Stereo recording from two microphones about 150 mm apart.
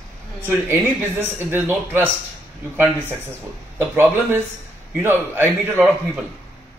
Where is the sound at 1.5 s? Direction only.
15° right (ahead or behind).